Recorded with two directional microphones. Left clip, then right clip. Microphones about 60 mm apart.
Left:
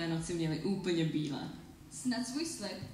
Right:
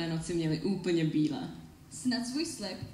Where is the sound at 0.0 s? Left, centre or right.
Centre.